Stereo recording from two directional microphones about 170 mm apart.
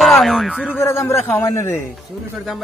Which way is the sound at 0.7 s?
15° left (ahead or behind).